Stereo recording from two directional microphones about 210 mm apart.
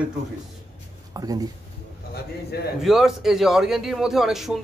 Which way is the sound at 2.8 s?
Centre (ahead or behind).